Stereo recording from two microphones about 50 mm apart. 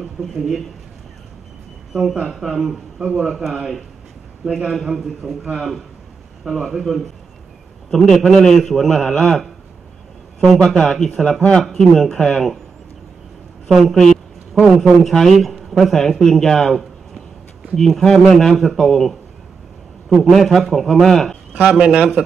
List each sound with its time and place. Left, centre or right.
1.9 s speech: centre
4.5 s a man's voice: centre
7.9 s a man's voice: centre
10.6 s a man's voice: centre
13.7 s speech: centre
13.9 s a woman's voice: centre
21.6 s a man's voice: centre